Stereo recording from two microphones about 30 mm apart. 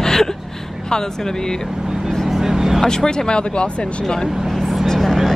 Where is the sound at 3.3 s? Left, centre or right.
Left.